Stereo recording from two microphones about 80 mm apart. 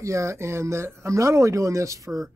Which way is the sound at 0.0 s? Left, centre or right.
Right.